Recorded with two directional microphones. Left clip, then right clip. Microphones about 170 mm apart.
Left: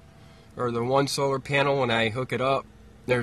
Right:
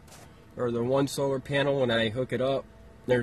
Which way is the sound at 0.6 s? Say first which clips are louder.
Left 2 dB; 45° left (ahead or behind).